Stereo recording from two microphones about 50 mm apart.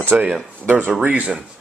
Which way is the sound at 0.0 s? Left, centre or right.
Right.